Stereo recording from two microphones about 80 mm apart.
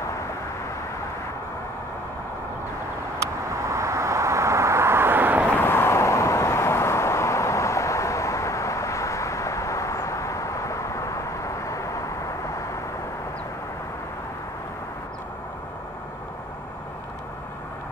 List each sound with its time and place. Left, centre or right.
3.6 s vehicle: right
5.6 s vehicle: left